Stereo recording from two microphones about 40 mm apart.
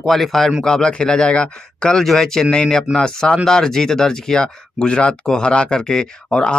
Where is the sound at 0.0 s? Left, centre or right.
Centre.